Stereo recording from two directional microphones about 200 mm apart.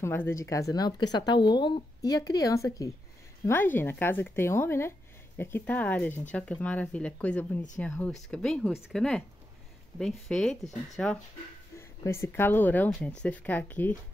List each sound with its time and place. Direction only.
0.0 s speech: 10° left (ahead or behind)